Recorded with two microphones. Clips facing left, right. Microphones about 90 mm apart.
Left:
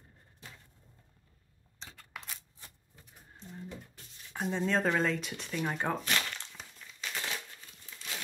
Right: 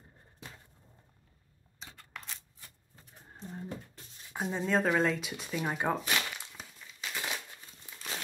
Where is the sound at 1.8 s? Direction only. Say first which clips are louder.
Even; centre (ahead or behind).